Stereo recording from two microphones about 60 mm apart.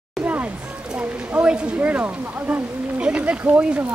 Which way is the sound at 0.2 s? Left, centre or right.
Right.